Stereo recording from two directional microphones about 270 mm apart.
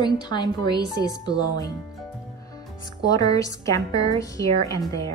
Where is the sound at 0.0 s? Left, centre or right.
Centre.